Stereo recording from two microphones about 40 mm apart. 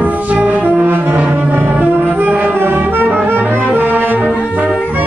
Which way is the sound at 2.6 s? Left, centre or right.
Right.